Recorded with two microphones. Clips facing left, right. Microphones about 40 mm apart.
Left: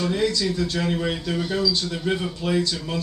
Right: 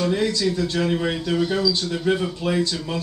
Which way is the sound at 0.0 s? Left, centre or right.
Centre.